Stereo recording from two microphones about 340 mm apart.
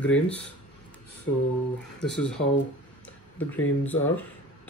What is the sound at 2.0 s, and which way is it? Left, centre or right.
Speech, centre.